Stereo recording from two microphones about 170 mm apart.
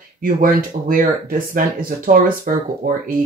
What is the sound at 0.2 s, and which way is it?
Speech, 55° right (ahead or behind).